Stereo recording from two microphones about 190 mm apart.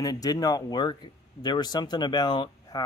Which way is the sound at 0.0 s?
20° left (ahead or behind).